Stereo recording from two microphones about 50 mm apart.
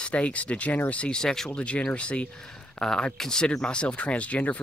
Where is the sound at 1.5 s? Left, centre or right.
Left.